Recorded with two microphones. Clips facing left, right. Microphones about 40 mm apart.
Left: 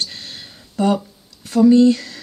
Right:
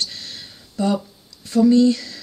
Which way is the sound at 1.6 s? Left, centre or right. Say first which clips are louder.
Left 3 dB; left.